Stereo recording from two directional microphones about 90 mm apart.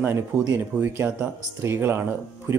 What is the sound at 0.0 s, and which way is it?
Speech, 25° right (ahead or behind).